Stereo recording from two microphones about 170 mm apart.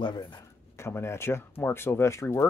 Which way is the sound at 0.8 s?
15° left (ahead or behind).